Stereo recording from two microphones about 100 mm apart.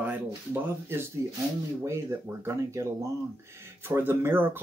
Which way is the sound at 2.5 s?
30° right (ahead or behind).